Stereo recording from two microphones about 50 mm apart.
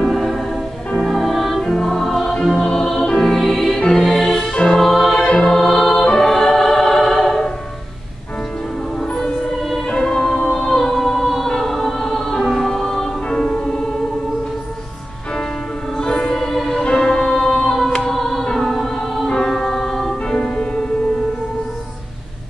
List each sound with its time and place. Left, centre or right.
0.1 s music: centre
4.5 s music: centre
4.7 s music: centre
9.0 s music: centre
9.6 s music: centre
9.8 s music: centre
16.0 s music: centre